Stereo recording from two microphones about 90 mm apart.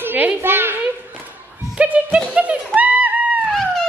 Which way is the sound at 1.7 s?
15° right (ahead or behind).